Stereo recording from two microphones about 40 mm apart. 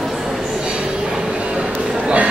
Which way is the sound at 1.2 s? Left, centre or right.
Right.